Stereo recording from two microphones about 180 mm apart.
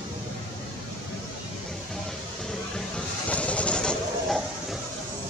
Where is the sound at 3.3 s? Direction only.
5° left (ahead or behind).